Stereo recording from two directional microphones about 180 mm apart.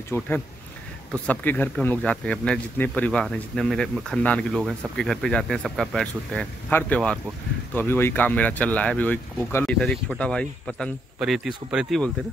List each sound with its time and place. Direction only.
0.1 s speech: 10° left (ahead or behind); by 12.0 s 5° right (ahead or behind)